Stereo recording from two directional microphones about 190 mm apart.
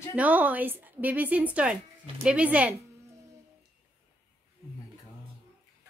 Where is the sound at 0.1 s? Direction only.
10° right (ahead or behind).